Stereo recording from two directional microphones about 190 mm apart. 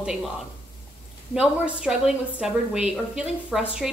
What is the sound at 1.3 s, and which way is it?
A woman's voice, 5° right (ahead or behind).